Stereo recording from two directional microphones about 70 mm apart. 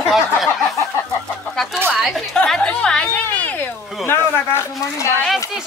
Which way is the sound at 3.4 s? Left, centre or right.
Left.